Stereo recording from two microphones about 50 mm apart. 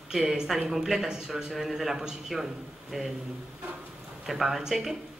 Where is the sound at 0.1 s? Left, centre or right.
Centre.